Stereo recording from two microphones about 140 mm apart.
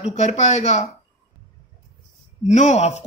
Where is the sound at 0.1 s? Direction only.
55° left (ahead or behind).